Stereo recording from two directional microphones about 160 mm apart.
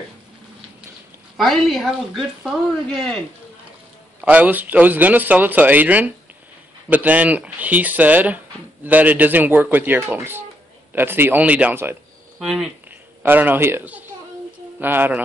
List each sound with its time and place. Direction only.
1.3 s speech: centre (ahead or behind)
4.2 s speech: 10° right (ahead or behind)
13.2 s a man's voice: 10° right (ahead or behind)